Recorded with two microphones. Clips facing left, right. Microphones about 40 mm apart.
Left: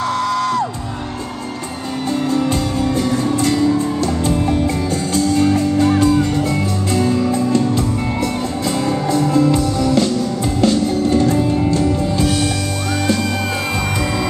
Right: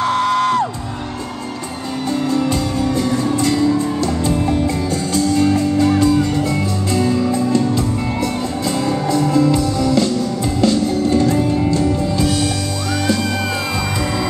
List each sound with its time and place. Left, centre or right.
0.0 s music: centre
5.8 s music: left
9.5 s music: left